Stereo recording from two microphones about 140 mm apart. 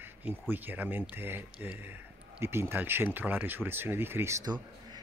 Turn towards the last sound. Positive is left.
turn(degrees=-20)  # may be behind; listen again after turning